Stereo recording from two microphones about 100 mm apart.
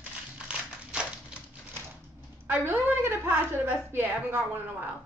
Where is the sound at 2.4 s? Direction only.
20° right (ahead or behind).